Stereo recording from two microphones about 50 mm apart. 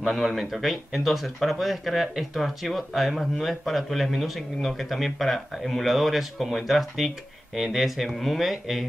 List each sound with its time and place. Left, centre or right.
0.0 s speech: centre